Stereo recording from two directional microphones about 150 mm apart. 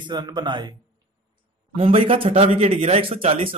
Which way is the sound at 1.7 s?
40° right (ahead or behind).